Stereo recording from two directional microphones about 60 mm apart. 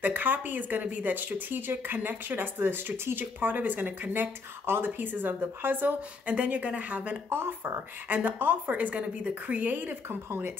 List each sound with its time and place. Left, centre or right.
0.0 s speech: right
6.3 s speech: right
7.2 s speech: right